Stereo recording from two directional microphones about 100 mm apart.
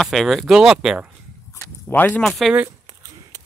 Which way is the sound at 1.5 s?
25° left (ahead or behind).